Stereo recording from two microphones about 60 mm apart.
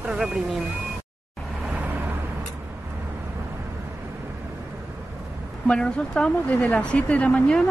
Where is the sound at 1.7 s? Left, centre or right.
Right.